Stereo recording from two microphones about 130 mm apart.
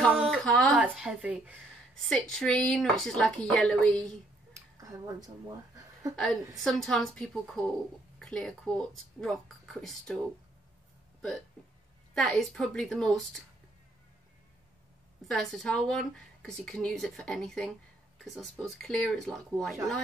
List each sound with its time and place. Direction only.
0.3 s a sound: 5° left (ahead or behind)
0.7 s a sound: 5° right (ahead or behind)
2.0 s a woman's voice: 5° left (ahead or behind)
4.7 s speech: 25° right (ahead or behind)
6.5 s a woman's voice: centre (ahead or behind)
15.2 s a woman's voice: 5° left (ahead or behind)